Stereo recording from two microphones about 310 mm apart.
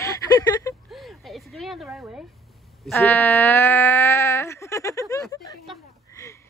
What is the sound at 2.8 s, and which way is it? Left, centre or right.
Speech, centre.